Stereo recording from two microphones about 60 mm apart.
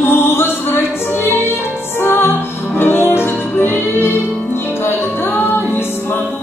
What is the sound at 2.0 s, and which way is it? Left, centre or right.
Music, left.